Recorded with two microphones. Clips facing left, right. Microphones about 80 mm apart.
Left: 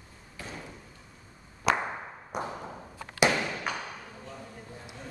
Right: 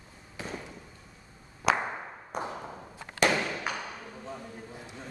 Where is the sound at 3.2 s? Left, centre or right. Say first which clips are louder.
Left 1 dB; centre.